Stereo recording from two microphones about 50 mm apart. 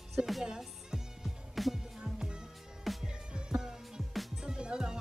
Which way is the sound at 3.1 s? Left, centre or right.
Centre.